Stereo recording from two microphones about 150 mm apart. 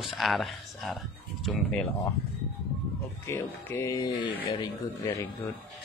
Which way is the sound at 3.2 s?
20° left (ahead or behind).